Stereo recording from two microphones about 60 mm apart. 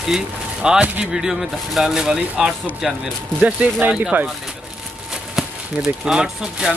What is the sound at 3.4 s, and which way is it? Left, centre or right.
Speech, right.